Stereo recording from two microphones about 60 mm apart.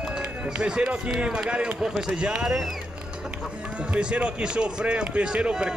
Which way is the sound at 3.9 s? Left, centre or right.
Centre.